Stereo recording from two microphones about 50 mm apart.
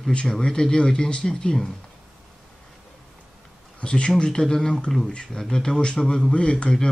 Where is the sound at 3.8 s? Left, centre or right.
Centre.